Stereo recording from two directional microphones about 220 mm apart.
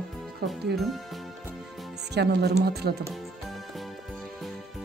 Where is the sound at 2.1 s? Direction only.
50° right (ahead or behind).